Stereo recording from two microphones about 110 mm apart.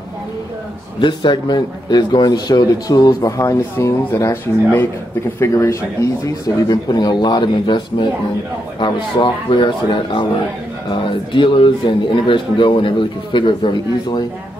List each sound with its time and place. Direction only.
1.0 s a man's voice: 45° left (ahead or behind); by 5.9 s 25° left (ahead or behind)
6.4 s a man's voice: 35° left (ahead or behind)
11.3 s a man's voice: 50° left (ahead or behind)